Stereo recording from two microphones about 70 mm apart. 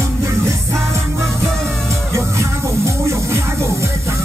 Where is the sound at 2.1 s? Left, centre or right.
Right.